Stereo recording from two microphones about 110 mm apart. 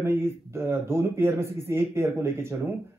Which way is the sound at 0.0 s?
25° right (ahead or behind).